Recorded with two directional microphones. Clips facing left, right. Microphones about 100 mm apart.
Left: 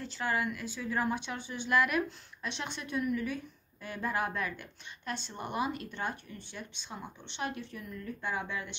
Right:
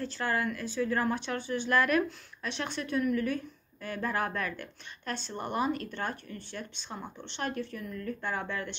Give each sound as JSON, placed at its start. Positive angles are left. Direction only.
{"t": 0.0, "sound": "speech", "side_deg": 15}